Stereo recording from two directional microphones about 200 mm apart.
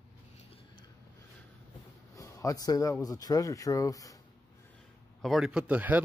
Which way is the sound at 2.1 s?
15° left (ahead or behind).